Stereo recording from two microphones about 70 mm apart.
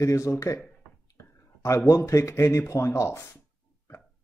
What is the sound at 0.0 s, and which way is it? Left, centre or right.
Speech, left.